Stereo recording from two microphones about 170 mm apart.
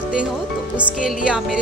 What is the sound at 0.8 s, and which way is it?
Music, 5° right (ahead or behind).